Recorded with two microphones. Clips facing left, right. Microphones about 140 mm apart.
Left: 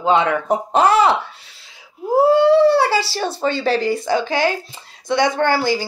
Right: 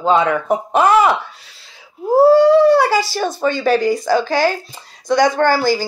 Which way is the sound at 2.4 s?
30° left (ahead or behind).